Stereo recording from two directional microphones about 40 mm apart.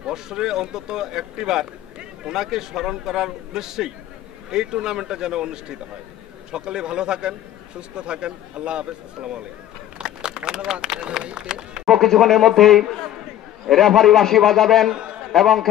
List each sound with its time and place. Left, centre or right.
0.0 s a man's voice: centre
9.9 s a sound: centre
11.5 s speech: centre
11.9 s a man's voice: centre